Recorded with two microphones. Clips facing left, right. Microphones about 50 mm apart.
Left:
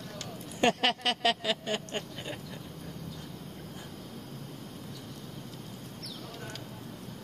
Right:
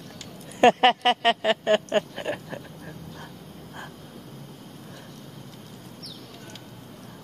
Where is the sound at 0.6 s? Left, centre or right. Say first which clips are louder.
Right 10 dB; right.